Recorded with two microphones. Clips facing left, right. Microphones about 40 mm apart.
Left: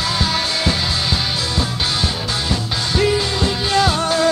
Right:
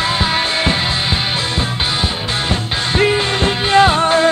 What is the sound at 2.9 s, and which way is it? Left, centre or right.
Music, right.